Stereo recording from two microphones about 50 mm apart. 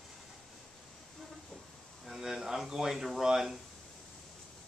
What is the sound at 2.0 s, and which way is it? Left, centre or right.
Speech, centre.